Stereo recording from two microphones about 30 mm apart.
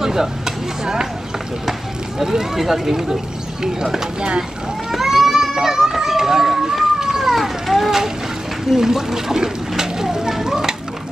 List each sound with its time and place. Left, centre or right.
0.0 s speech: centre
2.5 s speech: centre
4.9 s a sound: centre
7.3 s cat: centre
8.7 s speech: centre
10.4 s a sound: centre